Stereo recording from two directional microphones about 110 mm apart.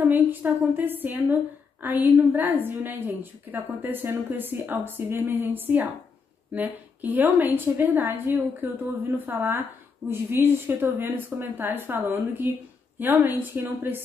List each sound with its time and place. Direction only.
0.1 s a woman's voice: 15° right (ahead or behind)